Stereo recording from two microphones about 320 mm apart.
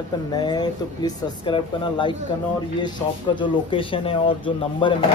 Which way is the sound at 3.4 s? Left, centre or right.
Centre.